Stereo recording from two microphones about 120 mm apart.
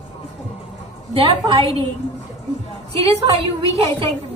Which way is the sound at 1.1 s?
50° right (ahead or behind).